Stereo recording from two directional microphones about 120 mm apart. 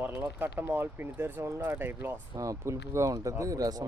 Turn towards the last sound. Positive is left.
turn(degrees=-30)  # may be behind; listen again after turning